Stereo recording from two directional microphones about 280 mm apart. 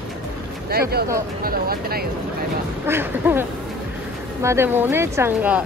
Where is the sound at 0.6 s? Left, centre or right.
Right.